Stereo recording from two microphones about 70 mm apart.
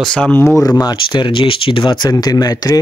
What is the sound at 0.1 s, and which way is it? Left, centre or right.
Speech, left.